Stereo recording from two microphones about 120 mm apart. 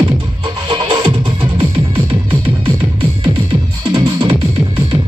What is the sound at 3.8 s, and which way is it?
Music, 45° right (ahead or behind).